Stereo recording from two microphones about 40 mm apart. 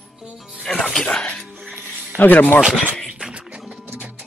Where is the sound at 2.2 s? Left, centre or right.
Left.